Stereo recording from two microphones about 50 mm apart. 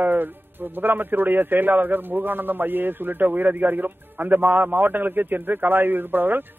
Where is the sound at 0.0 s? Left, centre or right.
Right.